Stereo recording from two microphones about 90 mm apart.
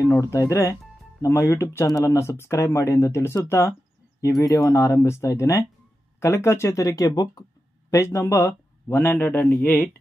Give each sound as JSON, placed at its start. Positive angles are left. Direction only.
{"t": 0.2, "sound": "a man's voice", "side_deg": 35}
{"t": 7.9, "sound": "a man's voice", "side_deg": 35}